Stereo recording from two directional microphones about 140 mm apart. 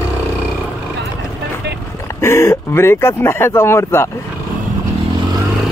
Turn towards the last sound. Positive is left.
turn(degrees=20)  # may be behind; listen again after turning